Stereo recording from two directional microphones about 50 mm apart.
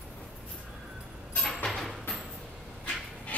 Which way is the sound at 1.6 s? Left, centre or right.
Centre.